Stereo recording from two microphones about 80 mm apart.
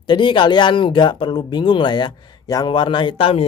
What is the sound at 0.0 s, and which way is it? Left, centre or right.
Speech, left.